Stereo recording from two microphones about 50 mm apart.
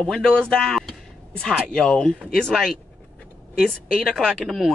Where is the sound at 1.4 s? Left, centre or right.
Centre.